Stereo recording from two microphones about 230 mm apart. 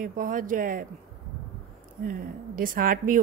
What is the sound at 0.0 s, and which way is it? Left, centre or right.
Speech, right.